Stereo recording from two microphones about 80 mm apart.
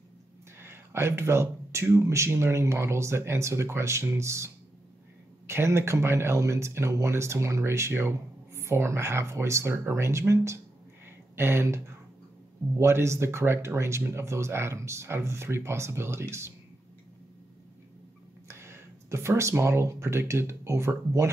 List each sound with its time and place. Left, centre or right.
0.6 s speech: right
5.5 s speech: right
11.1 s a sound: right
12.7 s speech: right
18.5 s speech: right